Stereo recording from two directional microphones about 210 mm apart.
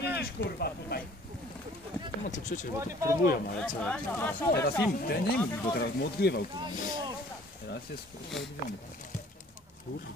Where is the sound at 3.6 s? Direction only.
5° left (ahead or behind).